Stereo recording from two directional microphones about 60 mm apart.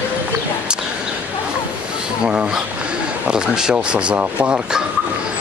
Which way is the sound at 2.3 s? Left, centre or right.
Centre.